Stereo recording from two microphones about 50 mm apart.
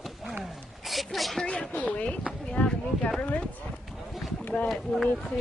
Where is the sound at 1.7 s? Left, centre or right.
Left.